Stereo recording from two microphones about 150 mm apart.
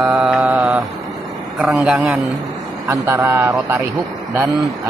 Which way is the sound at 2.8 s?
15° right (ahead or behind).